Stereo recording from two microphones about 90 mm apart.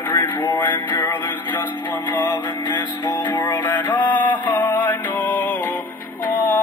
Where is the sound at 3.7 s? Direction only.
20° left (ahead or behind).